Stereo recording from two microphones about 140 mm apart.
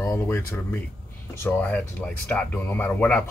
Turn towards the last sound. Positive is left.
turn(degrees=10)  # may be behind; listen again after turning